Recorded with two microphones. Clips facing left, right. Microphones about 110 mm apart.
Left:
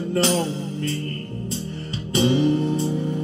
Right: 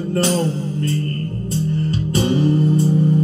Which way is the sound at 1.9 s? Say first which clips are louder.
Left 2 dB; 45° right (ahead or behind).